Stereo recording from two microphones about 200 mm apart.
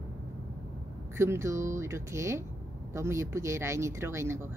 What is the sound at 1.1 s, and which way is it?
Speech, 15° right (ahead or behind).